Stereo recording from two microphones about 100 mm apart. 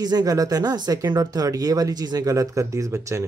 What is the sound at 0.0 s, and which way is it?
Speech, 40° right (ahead or behind).